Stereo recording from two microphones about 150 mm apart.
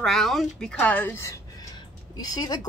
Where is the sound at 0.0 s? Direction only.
Centre (ahead or behind).